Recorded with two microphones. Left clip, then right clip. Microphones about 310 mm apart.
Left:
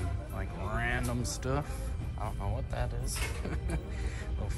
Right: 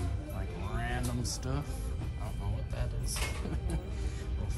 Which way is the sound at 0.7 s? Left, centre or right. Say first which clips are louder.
Left 5 dB; centre.